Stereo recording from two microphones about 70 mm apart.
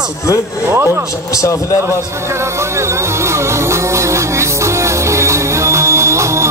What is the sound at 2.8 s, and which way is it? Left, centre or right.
Music, right.